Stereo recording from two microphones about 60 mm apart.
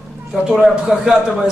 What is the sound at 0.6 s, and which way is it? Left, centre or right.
Speech, centre.